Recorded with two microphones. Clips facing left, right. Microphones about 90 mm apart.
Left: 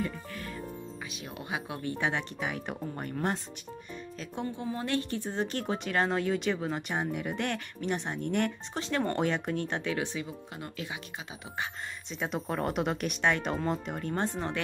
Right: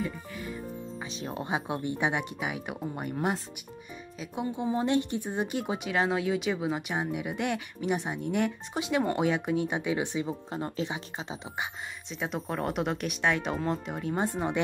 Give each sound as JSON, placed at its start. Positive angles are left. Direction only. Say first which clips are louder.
{"t": 0.0, "sound": "music", "louder": "right 1 dB", "side_deg": -10}
{"t": 1.1, "sound": "speech", "louder": "right 6 dB", "side_deg": -30}
{"t": 4.6, "sound": "speech", "louder": "right 7 dB", "side_deg": -20}
{"t": 10.2, "sound": "speech", "louder": "right 7 dB", "side_deg": -30}
{"t": 12.1, "sound": "speech", "louder": "even", "side_deg": 0}